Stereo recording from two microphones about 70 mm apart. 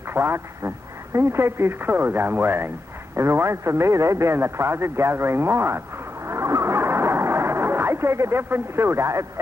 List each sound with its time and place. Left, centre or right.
0.1 s speech: right
6.2 s radio: right